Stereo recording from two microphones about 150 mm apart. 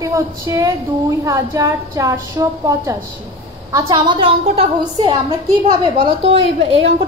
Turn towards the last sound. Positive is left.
turn(degrees=-45)  # may be behind; listen again after turning